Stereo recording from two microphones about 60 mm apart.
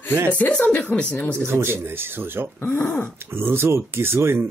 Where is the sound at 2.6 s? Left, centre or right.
Left.